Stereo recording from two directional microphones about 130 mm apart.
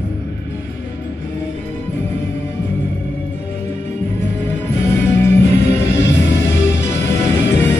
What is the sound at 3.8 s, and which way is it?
Music, 15° left (ahead or behind).